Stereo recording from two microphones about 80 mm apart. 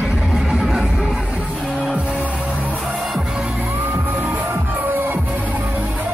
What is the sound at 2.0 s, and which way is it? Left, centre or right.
Music, centre.